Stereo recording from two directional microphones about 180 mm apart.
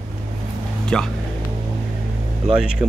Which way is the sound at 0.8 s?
5° left (ahead or behind).